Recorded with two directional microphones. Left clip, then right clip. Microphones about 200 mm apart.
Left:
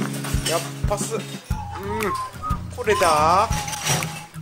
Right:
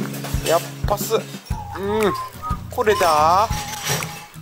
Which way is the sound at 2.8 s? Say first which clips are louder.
Right 2 dB; 30° right (ahead or behind).